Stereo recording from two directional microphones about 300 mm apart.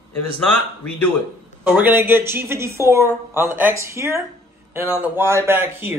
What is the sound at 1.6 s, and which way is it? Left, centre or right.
Speech, centre.